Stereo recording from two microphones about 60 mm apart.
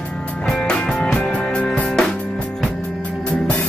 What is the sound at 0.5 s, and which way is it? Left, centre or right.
Music, centre.